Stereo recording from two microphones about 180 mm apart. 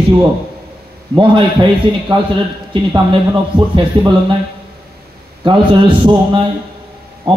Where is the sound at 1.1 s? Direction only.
25° right (ahead or behind).